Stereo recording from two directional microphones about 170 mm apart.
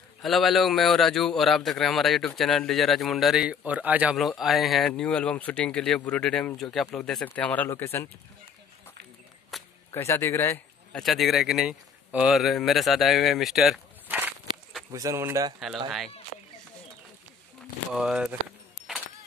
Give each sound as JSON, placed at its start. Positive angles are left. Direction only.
{"t": 0.2, "sound": "a man's voice", "side_deg": 0}
{"t": 9.5, "sound": "a sound", "side_deg": 0}
{"t": 9.9, "sound": "speech", "side_deg": 15}
{"t": 11.0, "sound": "a man's voice", "side_deg": 0}
{"t": 14.0, "sound": "walk", "side_deg": -10}
{"t": 14.9, "sound": "speech", "side_deg": -20}
{"t": 17.9, "sound": "a man's voice", "side_deg": -5}